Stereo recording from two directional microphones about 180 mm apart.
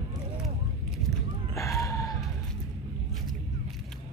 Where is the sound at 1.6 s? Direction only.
15° left (ahead or behind).